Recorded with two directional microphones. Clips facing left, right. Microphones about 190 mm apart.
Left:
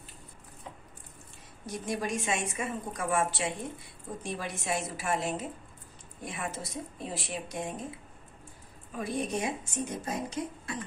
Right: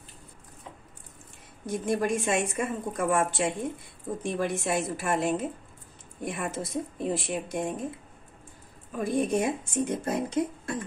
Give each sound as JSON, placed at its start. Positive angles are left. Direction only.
{"t": 1.7, "sound": "a woman's voice", "side_deg": -55}
{"t": 9.0, "sound": "a woman's voice", "side_deg": -50}